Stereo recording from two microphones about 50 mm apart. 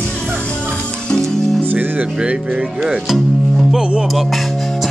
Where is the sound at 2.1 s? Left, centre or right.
Centre.